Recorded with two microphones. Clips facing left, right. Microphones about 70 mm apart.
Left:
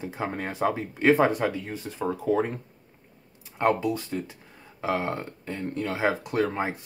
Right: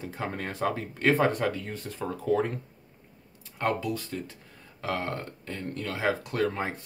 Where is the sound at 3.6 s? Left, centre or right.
Left.